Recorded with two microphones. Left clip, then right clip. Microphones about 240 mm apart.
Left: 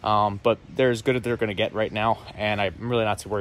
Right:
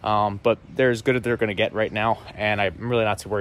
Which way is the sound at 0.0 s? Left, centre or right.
Centre.